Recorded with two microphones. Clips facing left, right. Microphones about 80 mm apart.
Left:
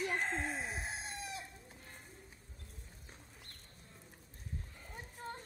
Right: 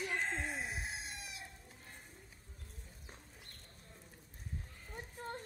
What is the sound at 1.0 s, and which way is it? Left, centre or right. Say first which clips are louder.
Chicken: left 5 dB; left.